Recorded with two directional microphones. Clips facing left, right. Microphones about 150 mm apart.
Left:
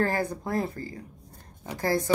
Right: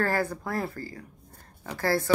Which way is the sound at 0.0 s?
20° left (ahead or behind).